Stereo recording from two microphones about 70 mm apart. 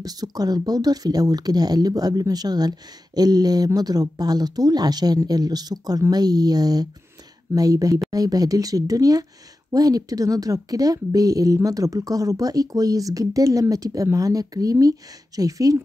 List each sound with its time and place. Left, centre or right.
0.0 s speech: right